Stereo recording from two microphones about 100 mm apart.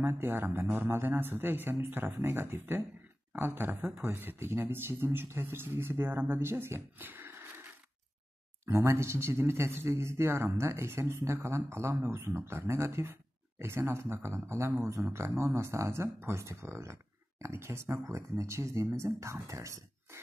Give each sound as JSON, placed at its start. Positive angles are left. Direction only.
{"t": 0.0, "sound": "a man's voice", "side_deg": -20}